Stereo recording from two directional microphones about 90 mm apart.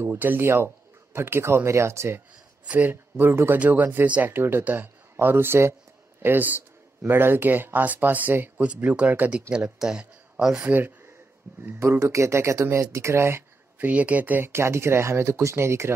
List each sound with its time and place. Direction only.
0.0 s speech: 25° right (ahead or behind)
2.6 s speech: 15° right (ahead or behind)
11.6 s speech: 25° right (ahead or behind)
12.0 s speech: 35° right (ahead or behind)